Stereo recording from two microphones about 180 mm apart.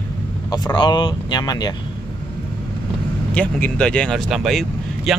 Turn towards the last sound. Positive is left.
turn(degrees=0)  # may be behind; listen again after turning